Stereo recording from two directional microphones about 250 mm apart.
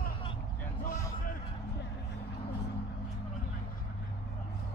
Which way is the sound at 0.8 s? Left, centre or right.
Left.